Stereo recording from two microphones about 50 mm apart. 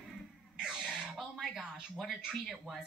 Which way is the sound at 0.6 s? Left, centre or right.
Centre.